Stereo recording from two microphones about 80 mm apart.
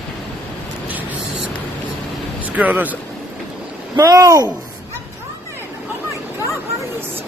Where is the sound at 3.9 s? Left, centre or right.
Right.